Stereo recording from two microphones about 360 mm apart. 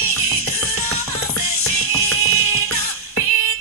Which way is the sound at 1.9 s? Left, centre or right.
Left.